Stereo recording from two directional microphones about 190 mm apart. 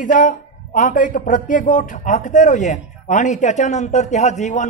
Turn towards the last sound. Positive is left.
turn(degrees=40)  # may be behind; listen again after turning